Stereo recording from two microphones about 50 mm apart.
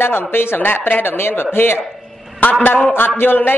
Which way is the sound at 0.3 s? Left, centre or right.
Left.